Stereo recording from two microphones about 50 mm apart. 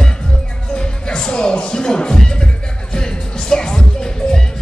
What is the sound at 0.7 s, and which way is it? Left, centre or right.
Music, centre.